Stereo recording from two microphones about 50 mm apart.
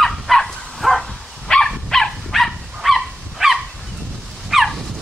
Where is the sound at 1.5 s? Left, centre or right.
Centre.